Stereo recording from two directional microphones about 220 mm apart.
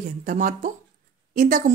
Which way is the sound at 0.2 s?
35° right (ahead or behind).